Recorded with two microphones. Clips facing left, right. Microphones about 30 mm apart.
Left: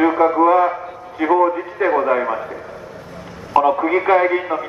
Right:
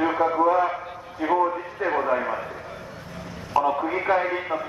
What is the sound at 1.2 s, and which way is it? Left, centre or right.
Speech, left.